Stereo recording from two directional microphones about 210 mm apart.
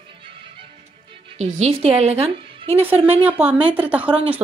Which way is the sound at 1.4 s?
35° right (ahead or behind).